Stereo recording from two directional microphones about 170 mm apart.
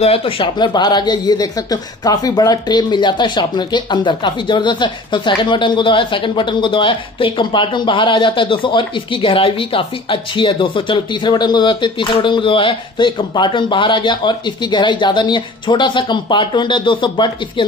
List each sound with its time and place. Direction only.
0.0 s speech: 35° left (ahead or behind)